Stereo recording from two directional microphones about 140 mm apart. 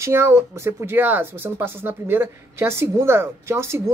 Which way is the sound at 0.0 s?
20° right (ahead or behind).